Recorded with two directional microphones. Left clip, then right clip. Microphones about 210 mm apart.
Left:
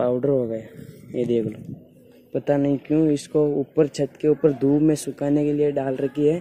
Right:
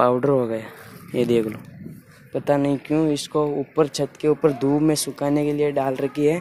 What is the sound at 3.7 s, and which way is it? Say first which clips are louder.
Speech: even; 25° left (ahead or behind).